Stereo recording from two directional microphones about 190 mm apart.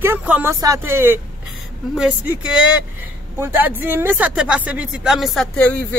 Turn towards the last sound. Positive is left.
turn(degrees=5)  # may be behind; listen again after turning